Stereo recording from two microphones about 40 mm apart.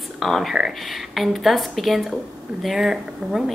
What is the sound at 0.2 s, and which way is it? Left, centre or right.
Speech, centre.